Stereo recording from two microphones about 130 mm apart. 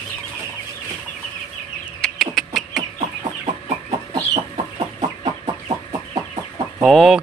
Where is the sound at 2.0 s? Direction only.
Centre (ahead or behind).